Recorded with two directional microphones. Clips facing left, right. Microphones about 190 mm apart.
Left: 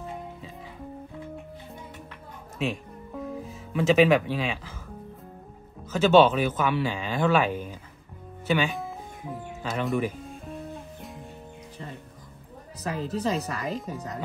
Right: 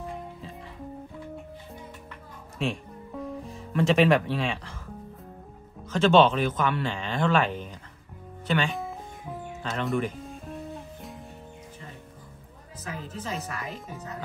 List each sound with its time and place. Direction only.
2.6 s music: centre (ahead or behind)
5.9 s speech: 5° left (ahead or behind)
8.5 s music: 5° left (ahead or behind)
9.7 s guitar: 5° left (ahead or behind)
12.8 s speech: 35° left (ahead or behind)